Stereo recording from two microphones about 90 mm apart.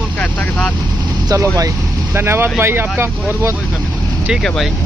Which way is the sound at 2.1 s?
25° right (ahead or behind).